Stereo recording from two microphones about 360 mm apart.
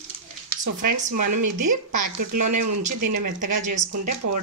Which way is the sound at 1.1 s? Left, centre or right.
Right.